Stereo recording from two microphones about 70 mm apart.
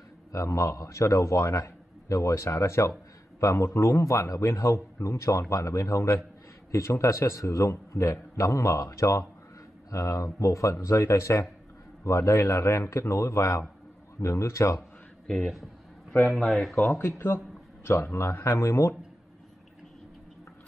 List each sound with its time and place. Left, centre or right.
0.3 s a man's voice: left
15.2 s speech: centre
17.8 s a man's voice: left